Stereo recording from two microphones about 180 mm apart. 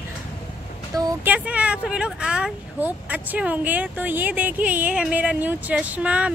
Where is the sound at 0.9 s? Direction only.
20° right (ahead or behind).